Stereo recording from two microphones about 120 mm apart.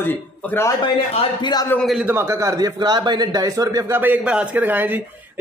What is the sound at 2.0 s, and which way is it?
Speech, 20° right (ahead or behind).